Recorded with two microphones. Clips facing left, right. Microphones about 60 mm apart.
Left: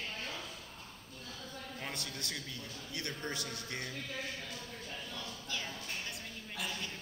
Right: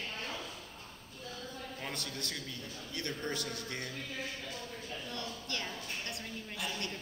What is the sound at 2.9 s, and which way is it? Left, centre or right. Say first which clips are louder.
Speech: right 2 dB; left.